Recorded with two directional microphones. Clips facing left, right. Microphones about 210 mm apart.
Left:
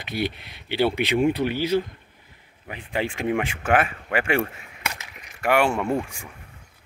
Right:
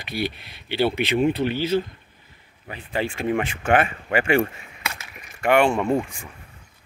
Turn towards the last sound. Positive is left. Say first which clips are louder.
# right 3 dB
turn(degrees=5)  # may be behind; listen again after turning